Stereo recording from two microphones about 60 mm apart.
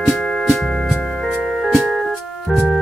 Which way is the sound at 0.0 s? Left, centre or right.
Centre.